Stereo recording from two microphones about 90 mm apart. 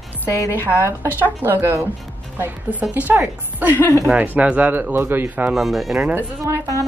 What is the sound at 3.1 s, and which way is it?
A woman's voice, 25° right (ahead or behind).